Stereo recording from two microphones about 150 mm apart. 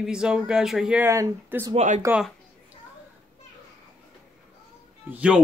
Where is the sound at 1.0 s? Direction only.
20° right (ahead or behind).